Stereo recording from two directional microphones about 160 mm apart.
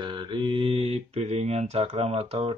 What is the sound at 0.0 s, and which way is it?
Mantra, 30° right (ahead or behind).